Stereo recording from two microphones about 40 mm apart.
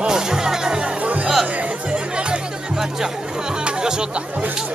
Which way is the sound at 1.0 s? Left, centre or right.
Right.